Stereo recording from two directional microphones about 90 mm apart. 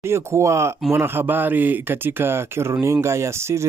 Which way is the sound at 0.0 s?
30° right (ahead or behind).